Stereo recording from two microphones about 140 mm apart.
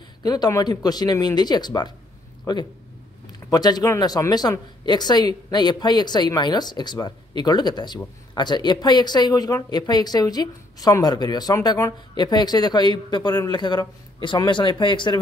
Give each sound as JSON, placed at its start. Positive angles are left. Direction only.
{"t": 0.2, "sound": "a woman's voice", "side_deg": 30}